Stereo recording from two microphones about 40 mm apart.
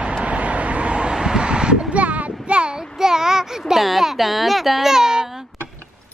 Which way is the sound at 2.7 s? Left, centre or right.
Centre.